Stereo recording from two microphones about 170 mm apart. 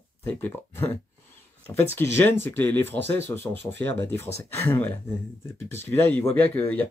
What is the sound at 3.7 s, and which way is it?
Speech, 90° right.